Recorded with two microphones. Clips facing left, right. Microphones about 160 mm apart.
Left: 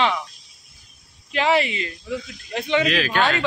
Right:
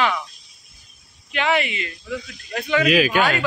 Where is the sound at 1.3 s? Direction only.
30° left (ahead or behind).